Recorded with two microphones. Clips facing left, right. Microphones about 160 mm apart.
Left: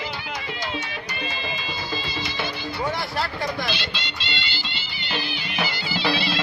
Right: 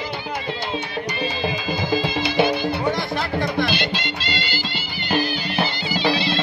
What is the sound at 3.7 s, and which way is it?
Music, 50° right (ahead or behind).